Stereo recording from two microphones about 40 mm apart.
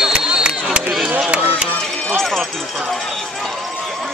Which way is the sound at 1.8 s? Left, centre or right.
Centre.